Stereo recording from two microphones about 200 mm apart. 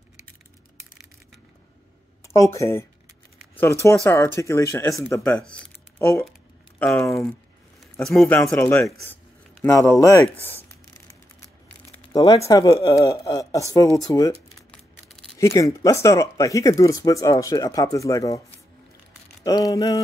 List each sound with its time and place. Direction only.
2.2 s speech: 15° left (ahead or behind)
4.0 s speech: 15° left (ahead or behind)
5.5 s a sound: 10° left (ahead or behind)
6.8 s speech: 5° left (ahead or behind)
12.1 s speech: 15° left (ahead or behind)
14.7 s crushing: 5° left (ahead or behind)
15.3 s speech: 15° left (ahead or behind)
19.4 s speech: 15° left (ahead or behind)